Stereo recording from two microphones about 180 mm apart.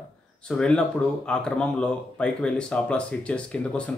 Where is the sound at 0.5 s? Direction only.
5° left (ahead or behind).